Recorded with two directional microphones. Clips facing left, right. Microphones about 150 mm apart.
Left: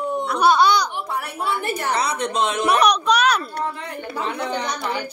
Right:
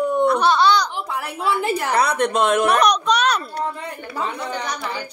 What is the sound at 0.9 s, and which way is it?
A woman's voice, 90° right.